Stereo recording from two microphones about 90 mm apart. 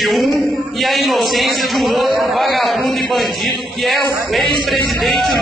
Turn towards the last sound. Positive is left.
turn(degrees=0)  # may be behind; listen again after turning